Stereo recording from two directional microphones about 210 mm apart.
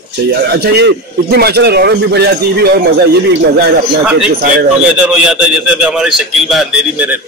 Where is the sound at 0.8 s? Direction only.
50° right (ahead or behind).